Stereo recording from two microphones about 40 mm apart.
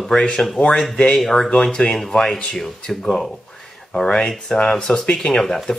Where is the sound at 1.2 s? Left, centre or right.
Centre.